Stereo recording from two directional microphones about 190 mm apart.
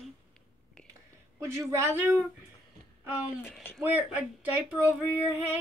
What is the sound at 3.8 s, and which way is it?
Speech, 10° right (ahead or behind).